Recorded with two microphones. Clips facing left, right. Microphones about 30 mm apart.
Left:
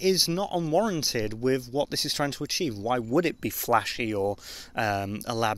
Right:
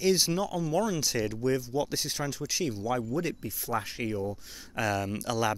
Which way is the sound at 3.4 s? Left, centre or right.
Left.